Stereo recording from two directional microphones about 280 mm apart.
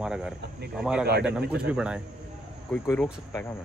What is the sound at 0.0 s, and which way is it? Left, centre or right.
Speech, centre.